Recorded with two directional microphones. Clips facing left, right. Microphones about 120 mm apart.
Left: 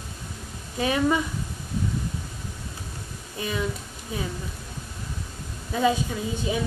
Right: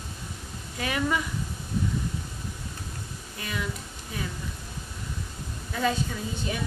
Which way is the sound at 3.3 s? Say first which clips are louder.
Left 5 dB; 20° left (ahead or behind).